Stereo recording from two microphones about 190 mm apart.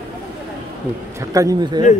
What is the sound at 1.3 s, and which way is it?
Speech, 20° right (ahead or behind).